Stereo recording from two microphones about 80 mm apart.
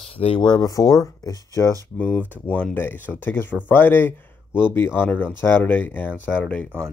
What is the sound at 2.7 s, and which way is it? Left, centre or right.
Speech, left.